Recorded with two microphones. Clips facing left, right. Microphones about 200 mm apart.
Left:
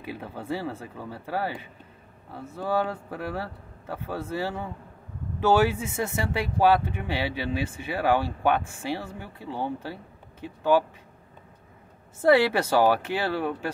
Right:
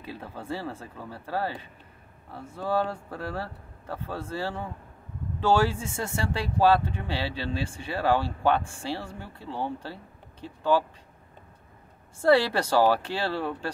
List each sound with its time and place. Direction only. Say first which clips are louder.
0.0 s speech: left 3 dB; 15° left (ahead or behind)
12.2 s speech: left 2 dB; 15° left (ahead or behind)